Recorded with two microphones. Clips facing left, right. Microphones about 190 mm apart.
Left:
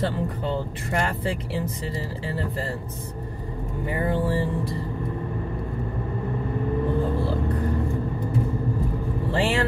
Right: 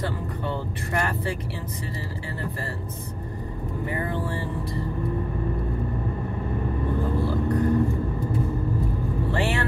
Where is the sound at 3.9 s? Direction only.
20° left (ahead or behind).